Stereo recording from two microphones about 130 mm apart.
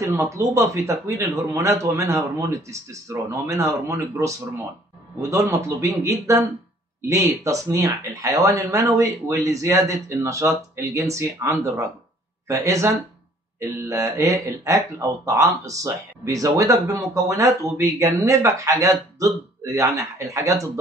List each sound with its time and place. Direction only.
0.0 s speech: 20° right (ahead or behind)